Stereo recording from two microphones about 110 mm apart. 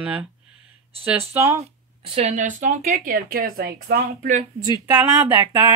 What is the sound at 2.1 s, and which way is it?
Speech, 80° right.